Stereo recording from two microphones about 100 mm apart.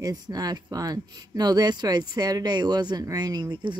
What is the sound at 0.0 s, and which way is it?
Speech, 40° right (ahead or behind).